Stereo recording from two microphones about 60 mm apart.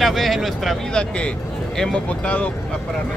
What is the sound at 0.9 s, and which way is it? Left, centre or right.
Speech, centre.